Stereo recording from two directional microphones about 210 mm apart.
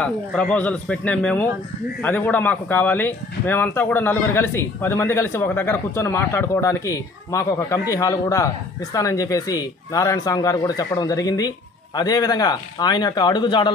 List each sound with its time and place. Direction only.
0.0 s speech: 5° left (ahead or behind); by 13.7 s 20° left (ahead or behind)